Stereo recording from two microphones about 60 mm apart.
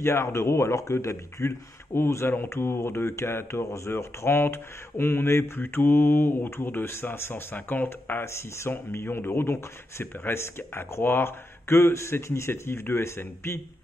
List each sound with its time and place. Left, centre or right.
0.0 s speech: left
9.0 s speech: left